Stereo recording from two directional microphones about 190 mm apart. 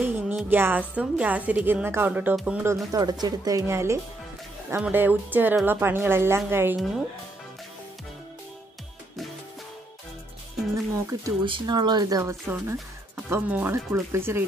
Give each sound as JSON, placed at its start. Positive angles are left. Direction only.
{"t": 0.0, "sound": "a woman's voice", "side_deg": -10}
{"t": 10.9, "sound": "a woman's voice", "side_deg": -15}